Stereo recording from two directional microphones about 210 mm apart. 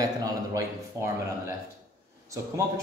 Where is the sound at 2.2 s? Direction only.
15° right (ahead or behind).